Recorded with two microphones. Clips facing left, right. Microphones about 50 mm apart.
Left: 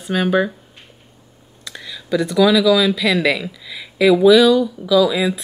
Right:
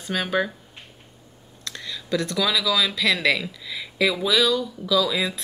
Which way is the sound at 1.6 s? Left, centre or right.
Centre.